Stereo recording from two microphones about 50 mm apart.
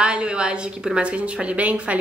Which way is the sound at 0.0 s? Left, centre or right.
Centre.